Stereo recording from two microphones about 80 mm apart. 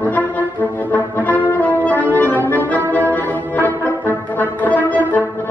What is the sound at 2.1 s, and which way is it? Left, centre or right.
Accordion, left.